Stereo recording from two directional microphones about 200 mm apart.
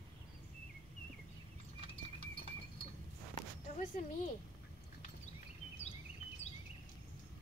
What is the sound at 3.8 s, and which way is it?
Speech, 40° left (ahead or behind).